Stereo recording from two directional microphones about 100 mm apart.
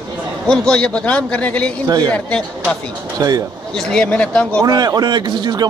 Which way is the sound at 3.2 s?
35° right (ahead or behind).